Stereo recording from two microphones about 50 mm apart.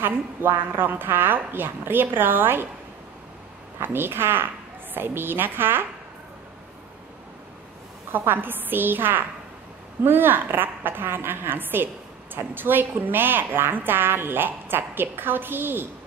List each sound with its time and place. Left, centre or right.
0.0 s a woman's voice: right
3.8 s a woman's voice: right
8.1 s a woman's voice: right